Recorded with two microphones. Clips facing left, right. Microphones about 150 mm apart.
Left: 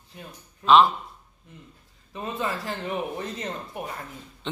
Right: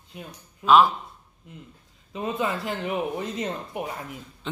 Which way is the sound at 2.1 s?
20° right (ahead or behind).